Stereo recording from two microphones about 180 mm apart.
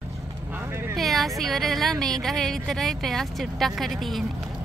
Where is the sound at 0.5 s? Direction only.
15° right (ahead or behind).